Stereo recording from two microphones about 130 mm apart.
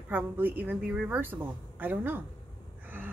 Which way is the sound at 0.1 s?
15° right (ahead or behind).